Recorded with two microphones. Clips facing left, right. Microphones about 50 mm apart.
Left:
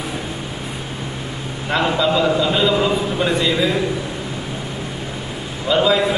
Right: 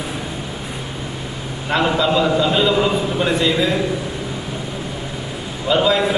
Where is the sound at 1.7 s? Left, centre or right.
Centre.